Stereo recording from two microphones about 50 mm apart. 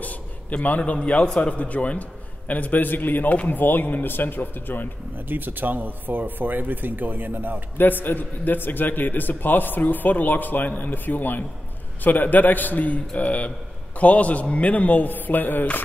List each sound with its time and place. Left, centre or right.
0.0 s a sound: left
0.9 s a man's voice: left
5.1 s speech: right
7.7 s a man's voice: left